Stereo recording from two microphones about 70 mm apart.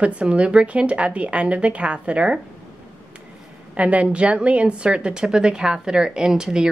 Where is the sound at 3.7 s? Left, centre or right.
Centre.